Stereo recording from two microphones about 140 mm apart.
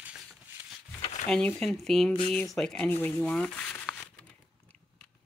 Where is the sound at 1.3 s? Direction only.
5° left (ahead or behind).